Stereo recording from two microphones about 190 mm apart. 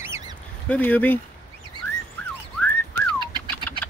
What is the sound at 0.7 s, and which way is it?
Speech, 10° left (ahead or behind).